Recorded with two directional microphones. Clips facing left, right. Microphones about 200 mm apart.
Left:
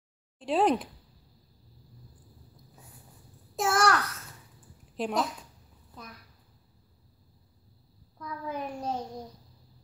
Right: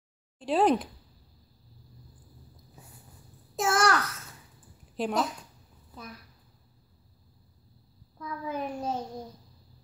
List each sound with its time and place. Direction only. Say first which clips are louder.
0.4 s a child's voice: right 1 dB; centre (ahead or behind)
3.5 s a child's voice: even; centre (ahead or behind)
8.2 s a child's voice: right 2 dB; 5° right (ahead or behind)